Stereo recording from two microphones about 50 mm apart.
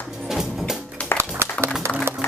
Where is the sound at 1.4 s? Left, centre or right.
Right.